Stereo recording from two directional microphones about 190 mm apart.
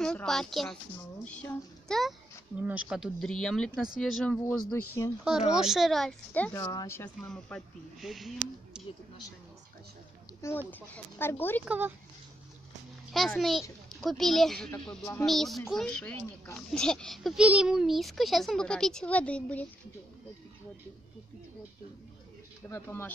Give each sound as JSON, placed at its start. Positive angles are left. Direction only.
{"t": 0.0, "sound": "a child's voice", "side_deg": 5}
{"t": 5.0, "sound": "speech", "side_deg": 15}
{"t": 5.5, "sound": "a child's voice", "side_deg": 0}
{"t": 8.7, "sound": "a sound", "side_deg": -5}
{"t": 10.4, "sound": "speech", "side_deg": 10}
{"t": 11.6, "sound": "speech", "side_deg": -5}
{"t": 13.1, "sound": "a child's voice", "side_deg": 0}
{"t": 22.7, "sound": "speech", "side_deg": 10}